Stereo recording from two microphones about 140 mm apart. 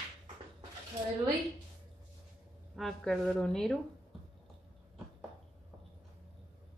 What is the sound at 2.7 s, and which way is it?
A woman's voice, 5° left (ahead or behind).